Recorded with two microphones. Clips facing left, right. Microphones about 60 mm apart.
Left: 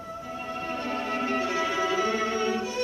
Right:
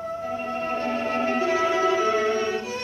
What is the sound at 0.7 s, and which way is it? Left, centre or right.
Music, right.